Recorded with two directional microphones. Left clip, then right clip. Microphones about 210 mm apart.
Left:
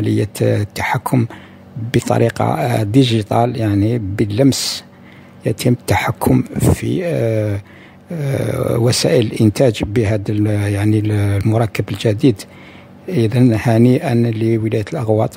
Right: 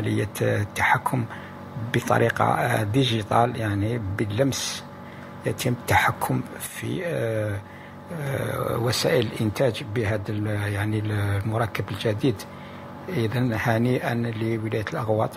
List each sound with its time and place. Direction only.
0.0 s speech: 50° left (ahead or behind)